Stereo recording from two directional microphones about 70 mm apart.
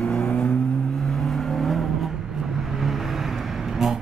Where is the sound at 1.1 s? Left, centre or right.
Centre.